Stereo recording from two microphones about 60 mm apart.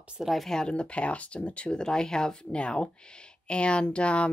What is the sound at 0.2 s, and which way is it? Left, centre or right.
Speech, centre.